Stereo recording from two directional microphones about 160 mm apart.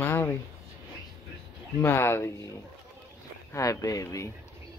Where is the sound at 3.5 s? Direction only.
20° left (ahead or behind).